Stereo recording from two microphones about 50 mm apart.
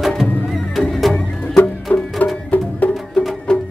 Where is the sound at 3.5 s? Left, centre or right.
Centre.